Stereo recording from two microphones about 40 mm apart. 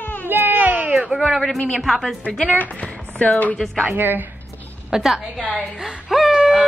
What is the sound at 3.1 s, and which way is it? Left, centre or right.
Speech, left.